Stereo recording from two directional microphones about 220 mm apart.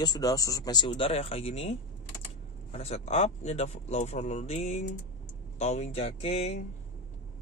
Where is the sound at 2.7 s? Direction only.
30° left (ahead or behind).